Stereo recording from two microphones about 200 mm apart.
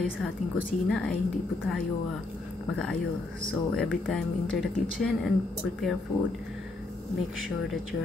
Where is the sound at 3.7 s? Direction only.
Centre (ahead or behind).